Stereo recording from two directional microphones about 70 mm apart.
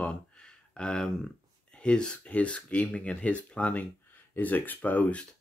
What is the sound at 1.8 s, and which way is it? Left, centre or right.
Speech, centre.